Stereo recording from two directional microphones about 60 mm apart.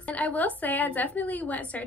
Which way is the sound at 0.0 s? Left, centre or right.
Left.